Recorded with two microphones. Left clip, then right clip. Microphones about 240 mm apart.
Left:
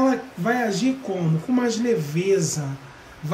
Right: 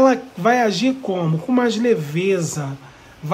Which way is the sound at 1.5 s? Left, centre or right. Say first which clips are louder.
Right 5 dB; centre.